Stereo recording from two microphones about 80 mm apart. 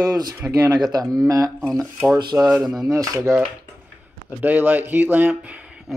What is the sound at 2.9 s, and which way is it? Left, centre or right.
Speech, right.